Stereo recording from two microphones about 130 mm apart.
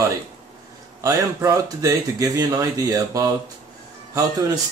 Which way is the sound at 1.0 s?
25° right (ahead or behind).